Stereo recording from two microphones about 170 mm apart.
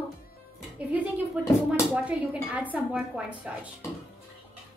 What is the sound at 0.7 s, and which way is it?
Speech, 10° right (ahead or behind).